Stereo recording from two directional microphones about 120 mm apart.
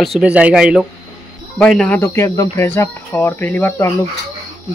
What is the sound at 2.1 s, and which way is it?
Speech, 25° left (ahead or behind).